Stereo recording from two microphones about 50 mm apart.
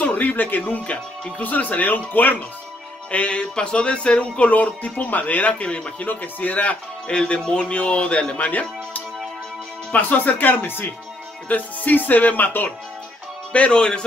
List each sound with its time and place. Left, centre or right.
0.0 s speech: left
3.1 s speech: left
5.5 s speech: centre
6.0 s speech: left
8.4 s speech: left
13.5 s speech: left